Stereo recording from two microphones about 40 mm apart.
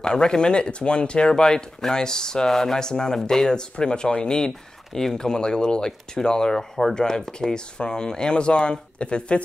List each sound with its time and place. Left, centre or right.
0.0 s speech: centre